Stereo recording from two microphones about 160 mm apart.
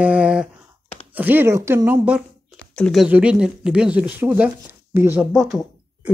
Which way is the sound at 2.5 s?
5° left (ahead or behind).